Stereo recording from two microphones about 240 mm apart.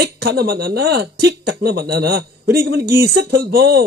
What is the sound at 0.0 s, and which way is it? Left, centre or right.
Speech, right.